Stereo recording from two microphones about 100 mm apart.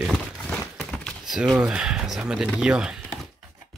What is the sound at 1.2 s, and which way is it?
Speech, 5° right (ahead or behind).